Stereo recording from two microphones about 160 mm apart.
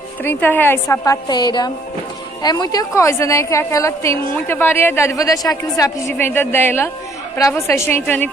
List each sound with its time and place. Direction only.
0.2 s a woman's voice: 15° left (ahead or behind)